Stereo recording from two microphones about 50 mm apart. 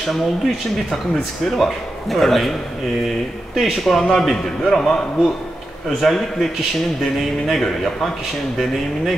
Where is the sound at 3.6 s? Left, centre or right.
Centre.